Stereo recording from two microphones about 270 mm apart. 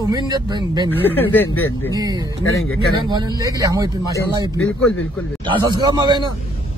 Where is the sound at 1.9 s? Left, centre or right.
Centre.